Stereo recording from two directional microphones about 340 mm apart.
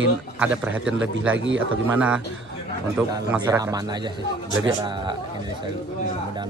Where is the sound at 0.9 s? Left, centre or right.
Right.